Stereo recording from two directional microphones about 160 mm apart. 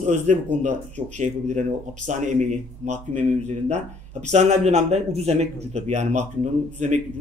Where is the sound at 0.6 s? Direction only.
50° right (ahead or behind).